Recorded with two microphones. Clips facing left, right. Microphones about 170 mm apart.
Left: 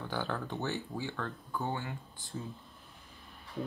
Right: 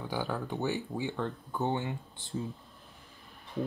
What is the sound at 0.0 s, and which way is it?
Speech, 10° right (ahead or behind).